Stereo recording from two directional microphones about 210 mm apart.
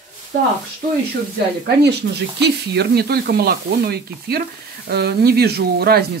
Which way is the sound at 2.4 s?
50° right (ahead or behind).